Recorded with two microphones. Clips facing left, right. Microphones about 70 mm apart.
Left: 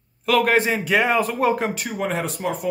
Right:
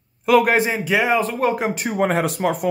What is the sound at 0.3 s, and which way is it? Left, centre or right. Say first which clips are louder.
Speech: right 2 dB; centre.